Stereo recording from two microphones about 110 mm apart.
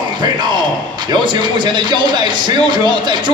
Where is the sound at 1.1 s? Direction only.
45° right (ahead or behind).